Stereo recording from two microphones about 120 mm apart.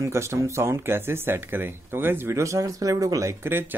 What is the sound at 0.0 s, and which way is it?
Speech, 25° right (ahead or behind).